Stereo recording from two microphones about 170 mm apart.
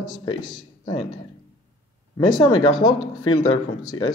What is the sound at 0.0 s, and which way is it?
Speech, 25° left (ahead or behind).